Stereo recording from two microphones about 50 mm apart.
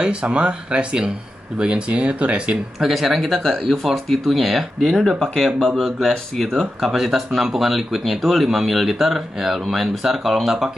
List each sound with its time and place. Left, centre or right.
0.0 s speech: right
2.8 s speech: centre